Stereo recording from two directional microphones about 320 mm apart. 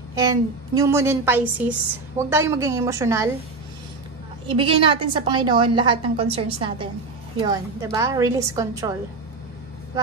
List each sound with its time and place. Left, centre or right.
0.2 s a woman's voice: centre
4.5 s a woman's voice: centre